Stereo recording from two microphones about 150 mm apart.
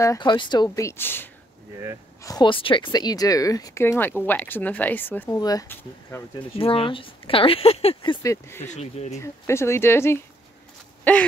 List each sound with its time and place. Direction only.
0.0 s speech: 25° left (ahead or behind)
2.2 s speech: 30° left (ahead or behind); by 5.4 s 15° left (ahead or behind)
5.4 s speech: 25° left (ahead or behind)
6.6 s speech: 40° left (ahead or behind)
8.2 s speech: 20° left (ahead or behind)
8.6 s speech: 50° left (ahead or behind)
9.1 s speech: 20° left (ahead or behind)